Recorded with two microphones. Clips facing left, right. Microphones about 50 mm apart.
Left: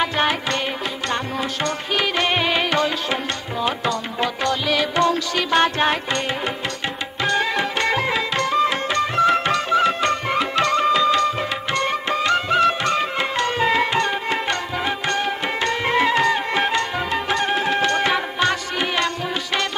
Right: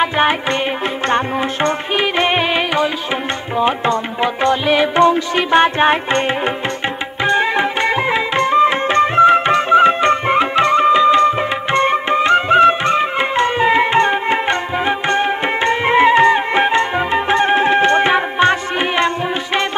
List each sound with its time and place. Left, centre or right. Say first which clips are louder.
0.0 s music: right 5 dB; right
3.5 s music: right 7 dB; right